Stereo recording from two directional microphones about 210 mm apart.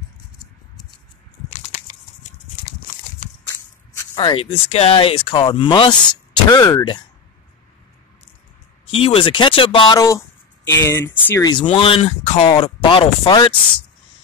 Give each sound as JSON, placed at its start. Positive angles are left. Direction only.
{"t": 1.5, "sound": "a sound", "side_deg": 35}
{"t": 3.9, "sound": "speech", "side_deg": 15}
{"t": 8.9, "sound": "speech", "side_deg": 25}